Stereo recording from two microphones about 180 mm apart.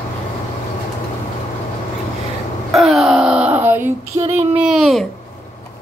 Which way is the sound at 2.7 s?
Centre (ahead or behind).